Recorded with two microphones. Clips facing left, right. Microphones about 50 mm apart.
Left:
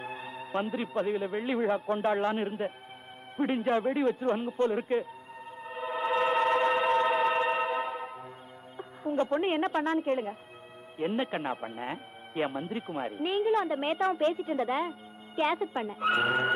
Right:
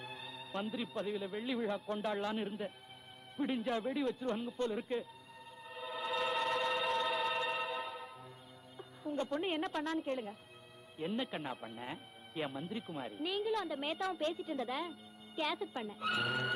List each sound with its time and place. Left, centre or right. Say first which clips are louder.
0.0 s a man's voice: left 9 dB; left
5.6 s choir: left 10 dB; left
8.7 s a woman's voice: left 9 dB; left